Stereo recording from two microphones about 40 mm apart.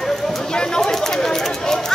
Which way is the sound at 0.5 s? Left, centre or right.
Centre.